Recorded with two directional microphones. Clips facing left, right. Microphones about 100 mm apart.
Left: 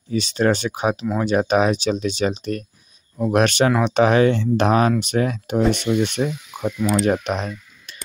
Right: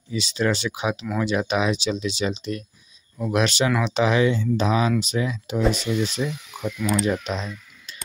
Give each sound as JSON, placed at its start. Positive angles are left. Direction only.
{"t": 0.1, "sound": "speech", "side_deg": 50}
{"t": 4.4, "sound": "speech", "side_deg": 65}
{"t": 6.2, "sound": "speech", "side_deg": 35}
{"t": 7.1, "sound": "speech", "side_deg": 55}